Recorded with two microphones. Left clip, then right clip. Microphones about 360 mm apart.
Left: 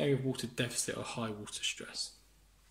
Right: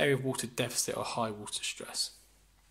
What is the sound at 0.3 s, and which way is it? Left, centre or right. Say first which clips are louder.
Speech: right 3 dB; centre.